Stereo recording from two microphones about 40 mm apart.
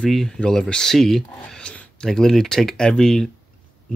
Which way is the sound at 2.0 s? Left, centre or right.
Centre.